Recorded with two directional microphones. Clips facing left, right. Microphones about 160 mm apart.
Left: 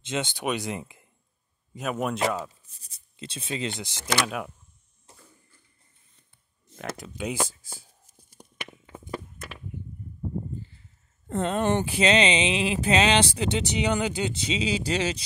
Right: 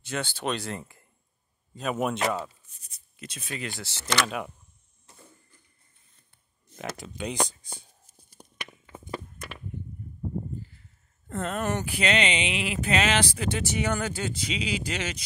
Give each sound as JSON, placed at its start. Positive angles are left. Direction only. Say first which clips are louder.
{"t": 0.0, "sound": "speech", "louder": "left 2 dB", "side_deg": 20}
{"t": 2.8, "sound": "speech", "louder": "left 3 dB", "side_deg": 30}
{"t": 6.8, "sound": "speech", "louder": "left 1 dB", "side_deg": 0}
{"t": 8.4, "sound": "a sound", "louder": "left 2 dB", "side_deg": 15}
{"t": 9.1, "sound": "walk", "louder": "left 1 dB", "side_deg": 0}
{"t": 11.2, "sound": "speech", "louder": "left 5 dB", "side_deg": 25}